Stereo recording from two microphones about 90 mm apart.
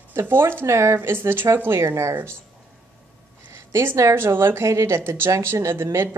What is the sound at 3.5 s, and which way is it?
Speech, 30° right (ahead or behind).